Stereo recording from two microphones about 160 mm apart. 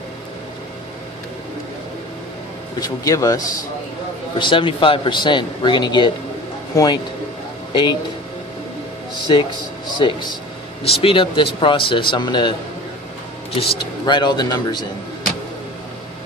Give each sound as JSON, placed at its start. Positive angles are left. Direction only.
{"t": 2.8, "sound": "a man's voice", "side_deg": 20}
{"t": 9.9, "sound": "a man's voice", "side_deg": 25}
{"t": 13.6, "sound": "speech", "side_deg": 35}